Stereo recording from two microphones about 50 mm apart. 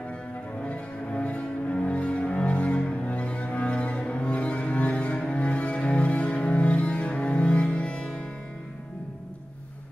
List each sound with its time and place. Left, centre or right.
0.6 s cello: left